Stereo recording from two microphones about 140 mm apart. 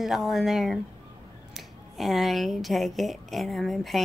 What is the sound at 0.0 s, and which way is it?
Speech, centre (ahead or behind).